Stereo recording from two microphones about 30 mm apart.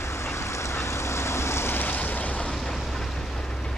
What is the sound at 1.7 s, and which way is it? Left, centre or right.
Waves, left.